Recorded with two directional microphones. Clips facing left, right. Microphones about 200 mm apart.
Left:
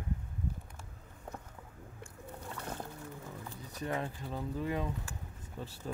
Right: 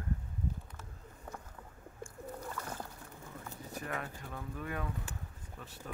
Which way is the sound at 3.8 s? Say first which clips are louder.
Left 6 dB; 25° left (ahead or behind).